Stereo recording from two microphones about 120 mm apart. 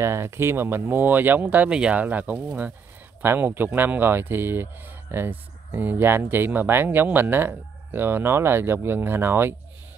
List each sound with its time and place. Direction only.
0.0 s speech: 20° right (ahead or behind)